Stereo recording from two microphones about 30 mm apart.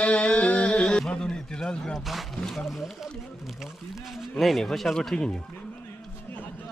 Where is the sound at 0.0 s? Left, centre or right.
Left.